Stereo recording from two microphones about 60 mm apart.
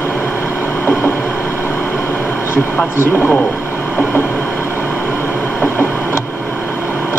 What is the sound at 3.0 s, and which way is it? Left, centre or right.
Speech, left.